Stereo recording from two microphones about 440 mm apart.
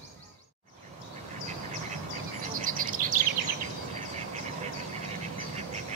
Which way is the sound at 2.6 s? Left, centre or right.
Centre.